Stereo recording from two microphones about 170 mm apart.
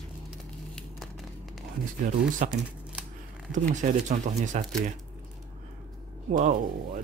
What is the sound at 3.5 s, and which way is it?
Speech, 45° right (ahead or behind).